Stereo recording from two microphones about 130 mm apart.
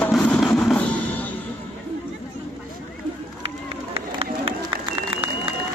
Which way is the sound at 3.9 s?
50° right (ahead or behind).